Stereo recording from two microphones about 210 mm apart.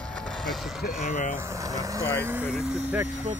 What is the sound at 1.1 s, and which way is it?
Speech, 35° left (ahead or behind).